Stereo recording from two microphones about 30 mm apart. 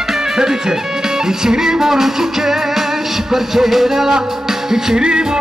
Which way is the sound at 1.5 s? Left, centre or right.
Right.